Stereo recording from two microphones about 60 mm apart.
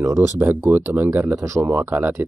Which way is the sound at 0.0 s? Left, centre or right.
Right.